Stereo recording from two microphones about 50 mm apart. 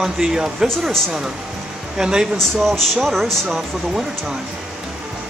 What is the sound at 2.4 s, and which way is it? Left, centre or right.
Speech, centre.